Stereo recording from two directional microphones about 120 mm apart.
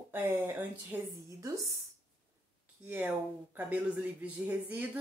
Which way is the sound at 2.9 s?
15° right (ahead or behind).